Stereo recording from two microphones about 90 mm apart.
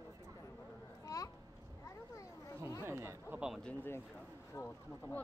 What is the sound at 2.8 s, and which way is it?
Chatter, 30° right (ahead or behind).